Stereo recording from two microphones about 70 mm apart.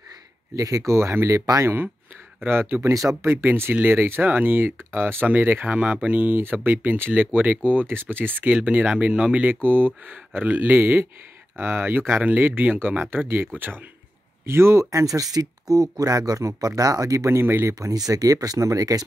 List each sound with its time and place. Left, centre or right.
0.6 s speech: right
2.7 s speech: right
8.8 s speech: centre
14.4 s speech: right
17.7 s speech: right